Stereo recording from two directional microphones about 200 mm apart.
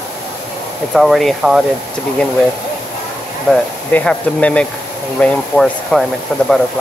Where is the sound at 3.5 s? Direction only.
5° left (ahead or behind).